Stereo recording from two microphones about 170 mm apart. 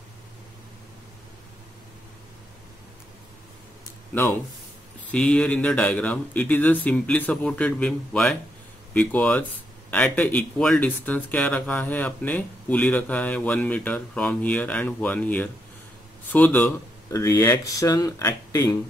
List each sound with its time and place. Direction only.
5.0 s speech: 5° left (ahead or behind)